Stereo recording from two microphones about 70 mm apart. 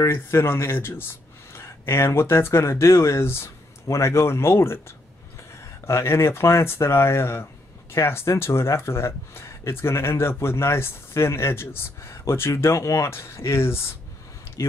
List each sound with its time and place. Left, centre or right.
0.0 s speech: left
14.6 s speech: left